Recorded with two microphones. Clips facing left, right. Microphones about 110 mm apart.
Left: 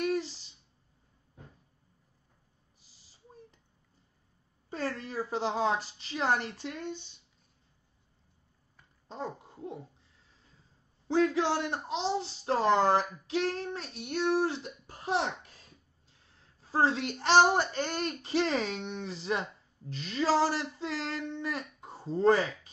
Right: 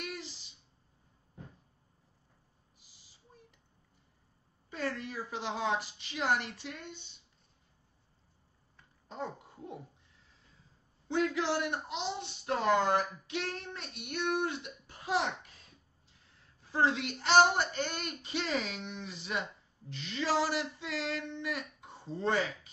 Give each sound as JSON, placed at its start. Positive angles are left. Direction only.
{"t": 0.0, "sound": "a sound", "side_deg": 40}
{"t": 4.6, "sound": "speech", "side_deg": 35}
{"t": 9.1, "sound": "babbling", "side_deg": 30}
{"t": 11.1, "sound": "speech", "side_deg": 35}
{"t": 16.7, "sound": "speech", "side_deg": 35}